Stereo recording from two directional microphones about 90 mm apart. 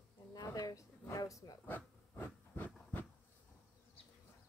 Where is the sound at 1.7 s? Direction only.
20° left (ahead or behind).